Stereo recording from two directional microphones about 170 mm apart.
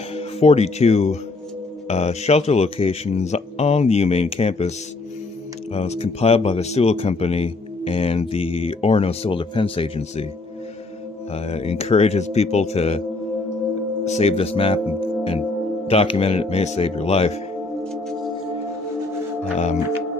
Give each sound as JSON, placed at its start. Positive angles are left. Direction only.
{"t": 0.1, "sound": "speech", "side_deg": 35}
{"t": 11.3, "sound": "speech", "side_deg": 35}
{"t": 14.0, "sound": "speech", "side_deg": 40}
{"t": 15.0, "sound": "music", "side_deg": 35}
{"t": 15.9, "sound": "speech", "side_deg": 35}